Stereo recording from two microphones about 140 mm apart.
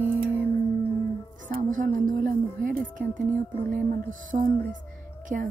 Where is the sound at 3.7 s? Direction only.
70° right (ahead or behind).